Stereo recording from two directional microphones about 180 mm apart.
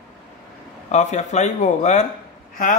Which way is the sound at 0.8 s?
40° left (ahead or behind).